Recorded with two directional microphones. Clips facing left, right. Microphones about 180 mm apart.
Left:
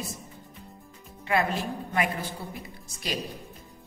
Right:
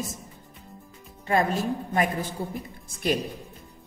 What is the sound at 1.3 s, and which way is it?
A woman's voice, 45° right (ahead or behind).